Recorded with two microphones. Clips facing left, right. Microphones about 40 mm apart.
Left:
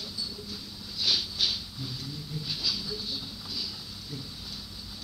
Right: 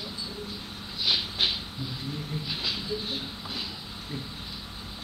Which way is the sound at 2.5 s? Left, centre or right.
Right.